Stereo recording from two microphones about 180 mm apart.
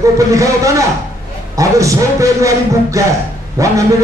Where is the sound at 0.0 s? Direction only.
15° right (ahead or behind).